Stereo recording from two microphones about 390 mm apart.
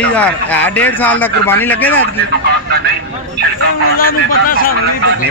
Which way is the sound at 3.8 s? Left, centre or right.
Left.